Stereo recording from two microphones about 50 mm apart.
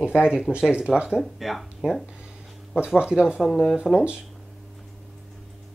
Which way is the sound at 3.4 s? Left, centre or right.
Centre.